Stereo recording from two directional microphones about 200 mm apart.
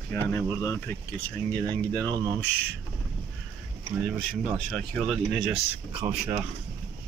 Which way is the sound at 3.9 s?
10° right (ahead or behind).